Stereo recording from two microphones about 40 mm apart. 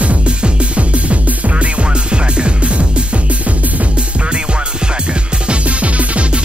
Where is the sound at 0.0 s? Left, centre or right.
Right.